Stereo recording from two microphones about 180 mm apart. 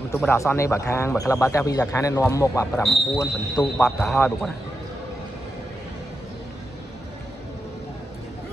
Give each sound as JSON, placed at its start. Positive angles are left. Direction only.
{"t": 0.1, "sound": "a man's voice", "side_deg": 15}
{"t": 4.1, "sound": "speech", "side_deg": 5}